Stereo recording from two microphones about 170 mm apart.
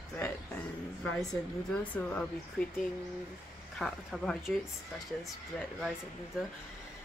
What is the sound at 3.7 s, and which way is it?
Speech, centre (ahead or behind).